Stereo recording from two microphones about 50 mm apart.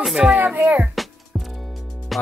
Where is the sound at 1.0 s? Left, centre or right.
Centre.